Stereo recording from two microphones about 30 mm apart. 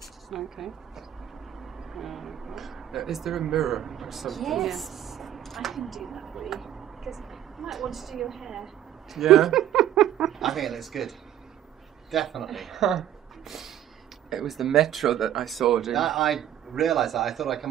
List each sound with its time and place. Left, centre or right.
0.3 s a man's voice: centre